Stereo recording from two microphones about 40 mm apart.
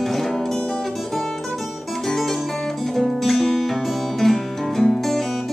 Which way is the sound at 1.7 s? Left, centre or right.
Centre.